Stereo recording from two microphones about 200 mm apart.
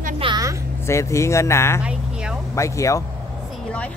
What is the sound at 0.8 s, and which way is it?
Speech, 15° left (ahead or behind).